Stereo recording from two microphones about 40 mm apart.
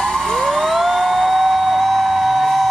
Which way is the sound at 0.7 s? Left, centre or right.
Centre.